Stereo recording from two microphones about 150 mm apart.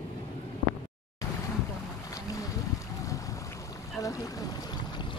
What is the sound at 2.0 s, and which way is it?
Boat, 25° left (ahead or behind).